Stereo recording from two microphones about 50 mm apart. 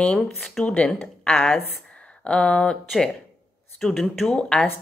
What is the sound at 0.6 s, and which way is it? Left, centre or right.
A woman's voice, left.